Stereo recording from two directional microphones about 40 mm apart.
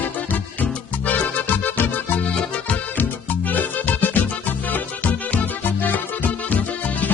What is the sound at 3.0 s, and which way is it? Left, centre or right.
Music, left.